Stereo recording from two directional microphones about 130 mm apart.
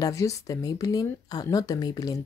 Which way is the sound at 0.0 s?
25° left (ahead or behind).